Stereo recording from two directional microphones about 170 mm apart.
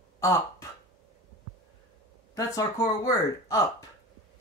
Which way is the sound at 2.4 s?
20° left (ahead or behind).